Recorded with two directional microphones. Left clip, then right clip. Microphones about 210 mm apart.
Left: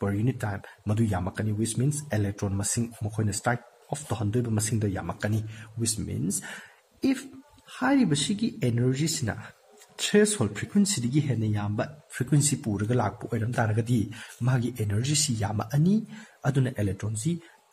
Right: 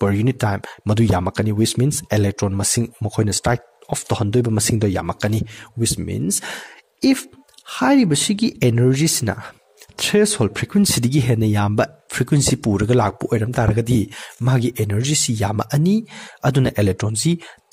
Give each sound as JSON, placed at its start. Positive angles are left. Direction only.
{"t": 0.0, "sound": "speech", "side_deg": -40}